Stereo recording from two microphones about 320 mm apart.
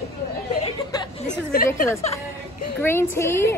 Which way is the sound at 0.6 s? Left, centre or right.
Centre.